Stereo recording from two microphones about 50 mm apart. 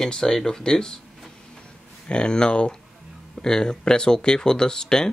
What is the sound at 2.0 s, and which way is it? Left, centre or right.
Speech, centre.